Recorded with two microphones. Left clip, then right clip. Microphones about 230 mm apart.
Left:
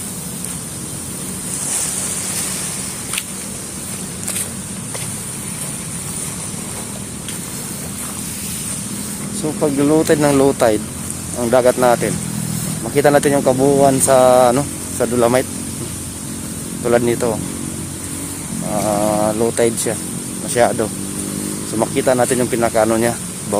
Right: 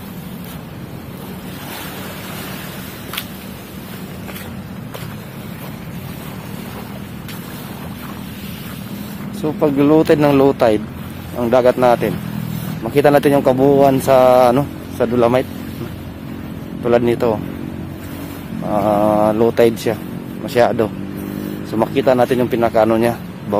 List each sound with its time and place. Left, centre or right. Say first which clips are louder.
9.4 s speech: right 2 dB; centre
16.8 s speech: right 1 dB; centre
18.7 s speech: right 3 dB; centre